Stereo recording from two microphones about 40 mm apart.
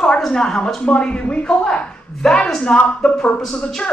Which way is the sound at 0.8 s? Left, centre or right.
Left.